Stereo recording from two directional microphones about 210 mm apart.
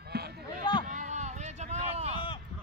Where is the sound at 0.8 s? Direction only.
35° right (ahead or behind).